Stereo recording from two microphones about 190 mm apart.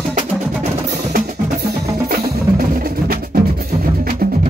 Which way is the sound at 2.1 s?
50° right (ahead or behind).